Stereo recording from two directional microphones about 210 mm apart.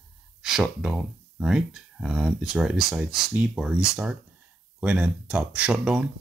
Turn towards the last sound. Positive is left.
turn(degrees=-5)  # may be behind; listen again after turning